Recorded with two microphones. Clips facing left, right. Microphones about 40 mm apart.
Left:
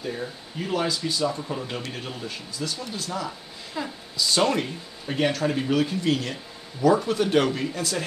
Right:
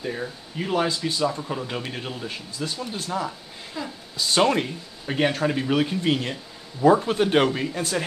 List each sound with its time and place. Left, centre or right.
0.0 s speech: right
3.8 s a woman's voice: centre
4.3 s speech: right